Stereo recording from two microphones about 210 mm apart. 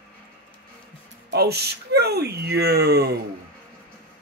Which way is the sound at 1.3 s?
50° right (ahead or behind).